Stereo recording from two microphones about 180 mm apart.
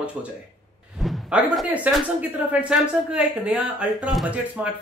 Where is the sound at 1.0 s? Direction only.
Centre (ahead or behind).